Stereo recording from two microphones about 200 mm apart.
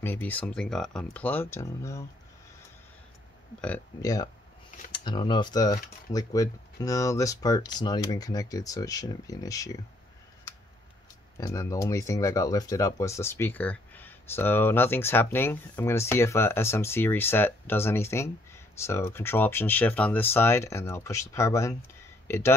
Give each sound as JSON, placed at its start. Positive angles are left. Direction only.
{"t": 0.0, "sound": "speech", "side_deg": 10}
{"t": 3.6, "sound": "speech", "side_deg": 15}
{"t": 11.3, "sound": "speech", "side_deg": 15}